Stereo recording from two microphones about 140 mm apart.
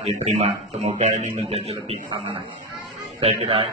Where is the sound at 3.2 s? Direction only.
45° right (ahead or behind).